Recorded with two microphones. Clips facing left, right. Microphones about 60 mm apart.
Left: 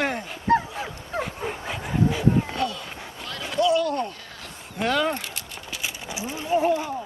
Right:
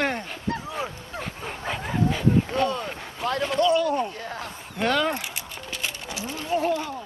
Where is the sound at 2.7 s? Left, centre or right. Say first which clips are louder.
Right 6 dB; right.